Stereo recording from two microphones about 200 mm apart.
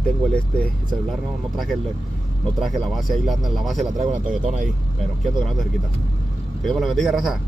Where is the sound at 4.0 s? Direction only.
35° right (ahead or behind).